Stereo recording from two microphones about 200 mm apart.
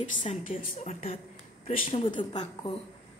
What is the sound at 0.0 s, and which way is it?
Speech, 40° left (ahead or behind).